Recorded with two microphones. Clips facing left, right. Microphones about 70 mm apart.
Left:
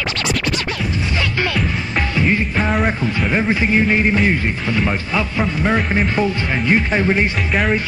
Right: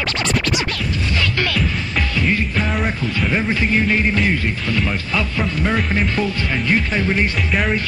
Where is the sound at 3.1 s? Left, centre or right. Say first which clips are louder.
Left 2 dB; centre.